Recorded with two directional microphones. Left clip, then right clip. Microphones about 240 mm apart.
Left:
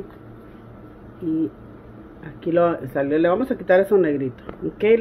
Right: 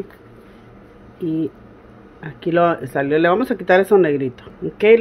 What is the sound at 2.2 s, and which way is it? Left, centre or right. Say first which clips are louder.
Speech: right 3 dB; right.